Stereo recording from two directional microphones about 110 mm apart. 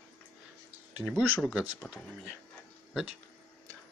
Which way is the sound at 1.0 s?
10° left (ahead or behind).